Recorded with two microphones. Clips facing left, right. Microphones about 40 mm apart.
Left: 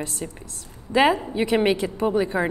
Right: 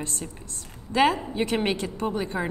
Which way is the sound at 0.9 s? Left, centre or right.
Centre.